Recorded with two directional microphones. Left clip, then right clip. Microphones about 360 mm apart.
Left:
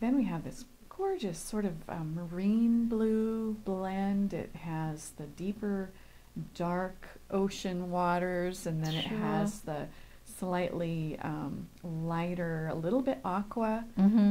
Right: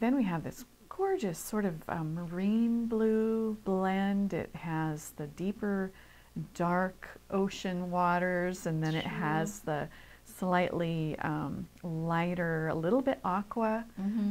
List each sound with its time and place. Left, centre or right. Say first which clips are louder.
0.0 s speech: right 1 dB; right